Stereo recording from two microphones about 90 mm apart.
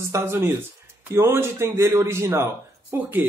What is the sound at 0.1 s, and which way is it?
A man's voice, 25° right (ahead or behind).